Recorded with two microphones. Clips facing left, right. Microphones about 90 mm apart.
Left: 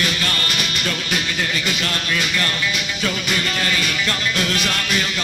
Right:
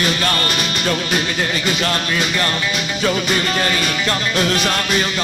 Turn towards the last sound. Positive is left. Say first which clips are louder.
# right 4 dB
turn(degrees=-30)  # may be behind; listen again after turning